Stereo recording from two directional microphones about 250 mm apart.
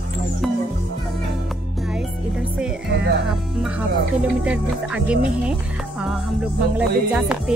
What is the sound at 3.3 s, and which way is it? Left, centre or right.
Speech, centre.